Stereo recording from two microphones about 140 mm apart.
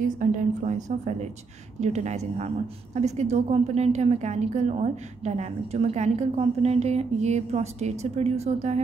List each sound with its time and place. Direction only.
0.0 s a woman's voice: 65° right (ahead or behind)